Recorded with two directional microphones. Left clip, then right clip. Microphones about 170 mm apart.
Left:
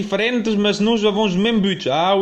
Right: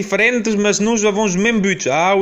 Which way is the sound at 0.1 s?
20° right (ahead or behind).